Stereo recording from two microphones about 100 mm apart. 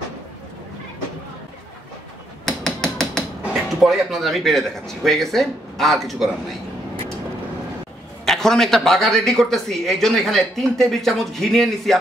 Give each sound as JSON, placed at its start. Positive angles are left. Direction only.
{"t": 2.4, "sound": "hammer", "side_deg": 5}
{"t": 3.5, "sound": "speech", "side_deg": 0}
{"t": 8.3, "sound": "speech", "side_deg": 5}